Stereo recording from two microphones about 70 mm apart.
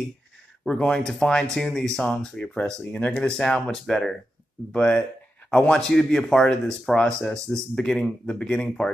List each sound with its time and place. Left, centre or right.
0.7 s speech: centre
4.7 s speech: centre